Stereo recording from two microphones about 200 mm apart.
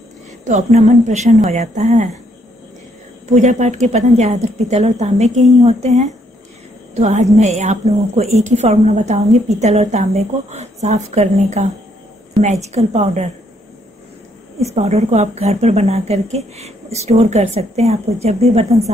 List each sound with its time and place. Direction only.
0.5 s a woman's voice: 35° right (ahead or behind)
3.3 s a woman's voice: 35° right (ahead or behind)
14.6 s a woman's voice: 35° right (ahead or behind)